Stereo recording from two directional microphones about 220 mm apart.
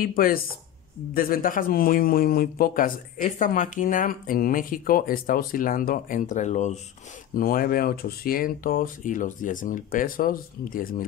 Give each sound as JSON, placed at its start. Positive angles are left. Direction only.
{"t": 0.0, "sound": "a man's voice", "side_deg": 40}